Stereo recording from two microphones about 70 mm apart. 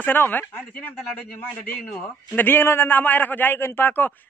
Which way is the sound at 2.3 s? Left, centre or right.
Left.